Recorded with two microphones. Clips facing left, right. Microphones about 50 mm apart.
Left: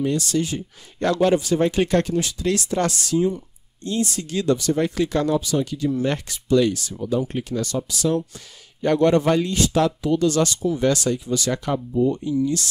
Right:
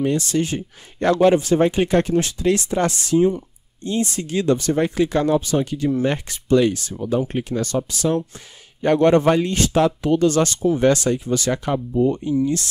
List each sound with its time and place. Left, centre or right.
0.0 s speech: right
0.9 s speech: right
2.1 s speech: right
2.4 s speech: right
4.8 s speech: centre
5.3 s speech: right
11.5 s speech: centre
11.9 s speech: right